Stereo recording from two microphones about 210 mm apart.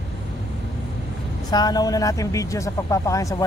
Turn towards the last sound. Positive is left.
turn(degrees=15)  # may be behind; listen again after turning